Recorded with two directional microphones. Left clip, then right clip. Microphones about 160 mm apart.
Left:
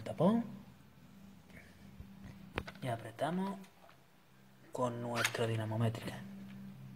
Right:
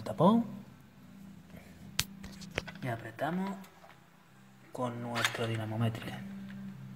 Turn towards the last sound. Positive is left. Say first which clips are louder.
# right 2 dB
turn(degrees=20)  # may be behind; listen again after turning